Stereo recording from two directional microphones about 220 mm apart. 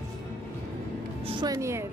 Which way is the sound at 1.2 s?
20° right (ahead or behind).